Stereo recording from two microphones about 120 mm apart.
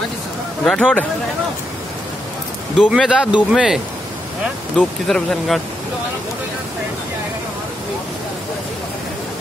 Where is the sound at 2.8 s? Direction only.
5° right (ahead or behind).